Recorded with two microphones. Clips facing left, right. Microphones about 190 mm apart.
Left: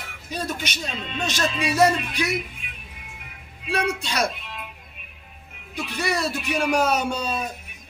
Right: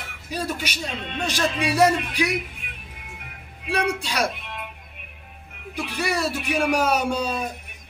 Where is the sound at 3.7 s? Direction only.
10° right (ahead or behind).